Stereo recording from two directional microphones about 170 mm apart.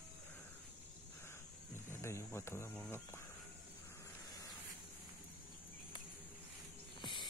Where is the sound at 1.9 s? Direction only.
15° left (ahead or behind).